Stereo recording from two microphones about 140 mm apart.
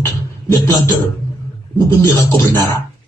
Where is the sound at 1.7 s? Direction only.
15° left (ahead or behind).